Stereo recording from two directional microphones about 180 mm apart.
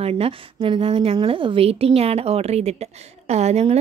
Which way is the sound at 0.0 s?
30° right (ahead or behind).